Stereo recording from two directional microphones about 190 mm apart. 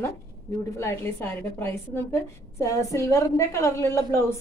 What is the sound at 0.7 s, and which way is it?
A woman's voice, 15° left (ahead or behind).